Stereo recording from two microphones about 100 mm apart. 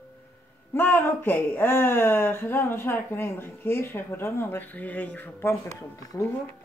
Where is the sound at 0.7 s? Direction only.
20° left (ahead or behind).